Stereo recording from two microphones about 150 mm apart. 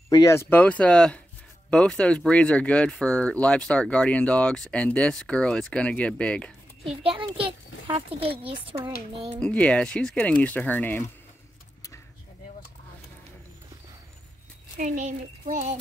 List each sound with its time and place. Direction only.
0.1 s speech: 20° left (ahead or behind)
7.0 s a child's voice: 35° right (ahead or behind)
9.4 s speech: 10° left (ahead or behind)
14.8 s a child's voice: 55° right (ahead or behind)